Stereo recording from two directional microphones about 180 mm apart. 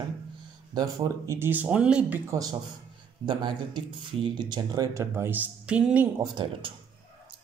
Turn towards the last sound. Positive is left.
turn(degrees=-25)  # may be behind; listen again after turning